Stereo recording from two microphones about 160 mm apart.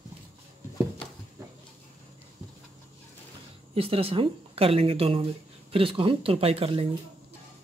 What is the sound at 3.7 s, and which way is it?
Speech, 35° right (ahead or behind).